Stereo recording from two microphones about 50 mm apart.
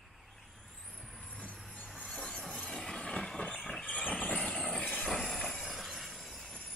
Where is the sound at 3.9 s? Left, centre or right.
Left.